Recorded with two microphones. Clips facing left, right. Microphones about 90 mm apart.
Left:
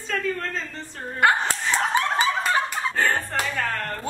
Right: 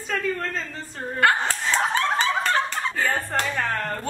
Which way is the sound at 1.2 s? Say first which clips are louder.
Left 1 dB; 20° left (ahead or behind).